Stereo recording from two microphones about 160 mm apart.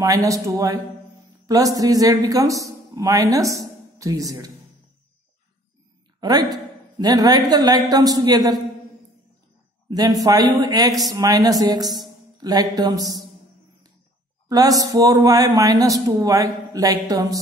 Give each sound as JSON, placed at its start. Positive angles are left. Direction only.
{"t": 0.0, "sound": "speech", "side_deg": -20}
{"t": 6.2, "sound": "a woman's voice", "side_deg": -25}
{"t": 9.8, "sound": "speech", "side_deg": -25}
{"t": 14.5, "sound": "speech", "side_deg": -20}